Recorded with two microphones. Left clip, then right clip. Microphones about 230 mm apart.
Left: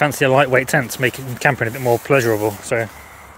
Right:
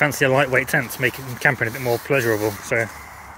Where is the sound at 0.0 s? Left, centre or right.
Centre.